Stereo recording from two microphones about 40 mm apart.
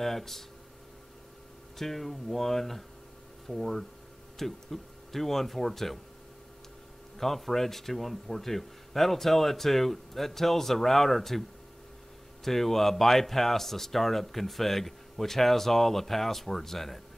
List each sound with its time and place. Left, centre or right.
0.0 s speech: centre
1.8 s speech: centre
7.2 s speech: centre
12.4 s speech: centre